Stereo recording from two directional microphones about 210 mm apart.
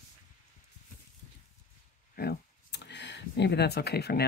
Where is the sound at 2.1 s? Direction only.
50° left (ahead or behind).